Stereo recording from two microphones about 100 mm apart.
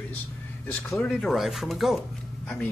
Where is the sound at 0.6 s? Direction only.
15° left (ahead or behind).